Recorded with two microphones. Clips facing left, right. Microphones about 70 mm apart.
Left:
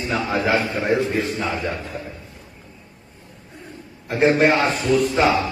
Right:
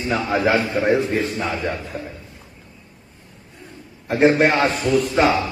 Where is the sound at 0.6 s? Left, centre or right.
Right.